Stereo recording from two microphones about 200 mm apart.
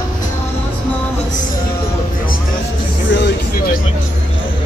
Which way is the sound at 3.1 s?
55° left (ahead or behind).